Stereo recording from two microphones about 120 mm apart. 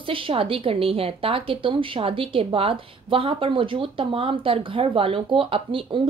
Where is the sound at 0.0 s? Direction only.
50° right (ahead or behind).